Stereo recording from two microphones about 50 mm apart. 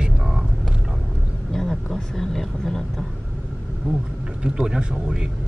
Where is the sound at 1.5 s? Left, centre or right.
Centre.